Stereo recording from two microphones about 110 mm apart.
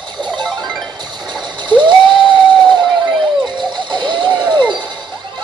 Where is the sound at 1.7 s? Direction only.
45° right (ahead or behind).